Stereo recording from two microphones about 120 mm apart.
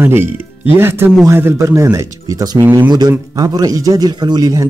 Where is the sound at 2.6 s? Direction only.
20° right (ahead or behind).